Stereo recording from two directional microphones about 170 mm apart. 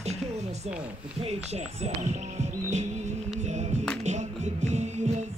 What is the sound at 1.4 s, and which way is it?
Speech, 40° right (ahead or behind).